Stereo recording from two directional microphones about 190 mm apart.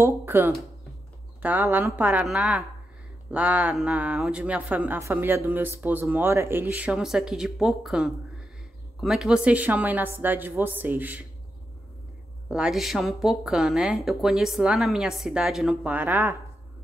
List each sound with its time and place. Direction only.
0.0 s speech: 10° right (ahead or behind)
12.4 s speech: 5° right (ahead or behind)